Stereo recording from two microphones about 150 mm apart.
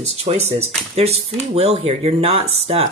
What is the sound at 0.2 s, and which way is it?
Speech, 45° right (ahead or behind).